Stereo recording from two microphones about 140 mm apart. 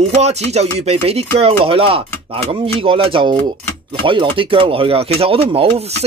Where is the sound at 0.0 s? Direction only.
50° right (ahead or behind).